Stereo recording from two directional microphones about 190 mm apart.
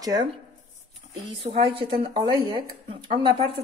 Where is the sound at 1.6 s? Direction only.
25° right (ahead or behind).